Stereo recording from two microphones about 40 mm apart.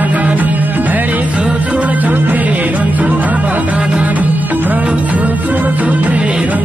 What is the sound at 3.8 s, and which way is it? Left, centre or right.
Music, right.